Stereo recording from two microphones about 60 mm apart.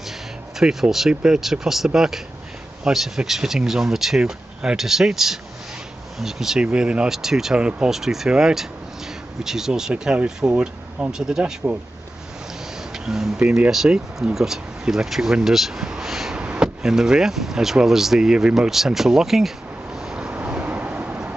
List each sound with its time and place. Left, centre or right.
0.6 s speech: centre
6.6 s speech: centre
7.1 s speech: centre
7.9 s speech: centre
12.9 s speech: centre
15.4 s a sound: centre
16.3 s speech: centre
20.0 s vehicle: centre
20.3 s vehicle: right